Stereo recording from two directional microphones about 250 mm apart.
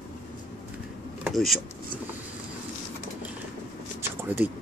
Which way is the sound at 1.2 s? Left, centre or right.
Centre.